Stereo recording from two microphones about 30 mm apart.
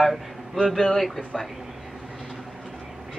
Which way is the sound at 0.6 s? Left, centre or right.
Centre.